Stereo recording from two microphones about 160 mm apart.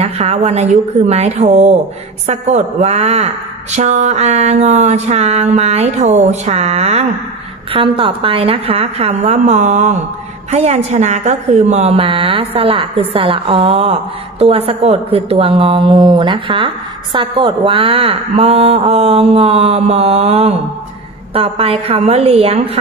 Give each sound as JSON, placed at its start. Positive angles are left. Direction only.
{"t": 0.0, "sound": "a woman's voice", "side_deg": -40}